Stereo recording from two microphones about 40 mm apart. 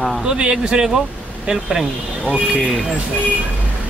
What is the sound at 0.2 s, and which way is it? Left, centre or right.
Speech, right.